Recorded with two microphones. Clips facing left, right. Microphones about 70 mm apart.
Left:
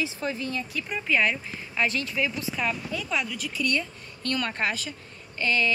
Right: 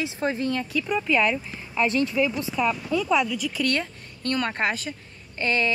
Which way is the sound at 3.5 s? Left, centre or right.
Right.